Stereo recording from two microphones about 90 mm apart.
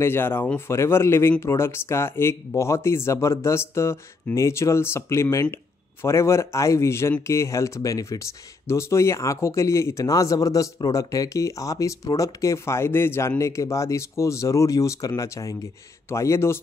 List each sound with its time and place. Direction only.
0.0 s speech: 25° left (ahead or behind)